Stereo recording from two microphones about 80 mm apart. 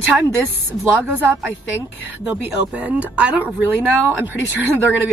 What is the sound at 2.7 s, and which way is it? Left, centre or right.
A woman's voice, centre.